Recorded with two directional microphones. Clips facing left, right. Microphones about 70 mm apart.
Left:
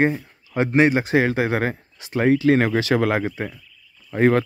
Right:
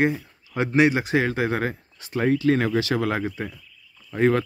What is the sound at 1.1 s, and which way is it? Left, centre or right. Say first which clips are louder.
Speech: left 3 dB; left.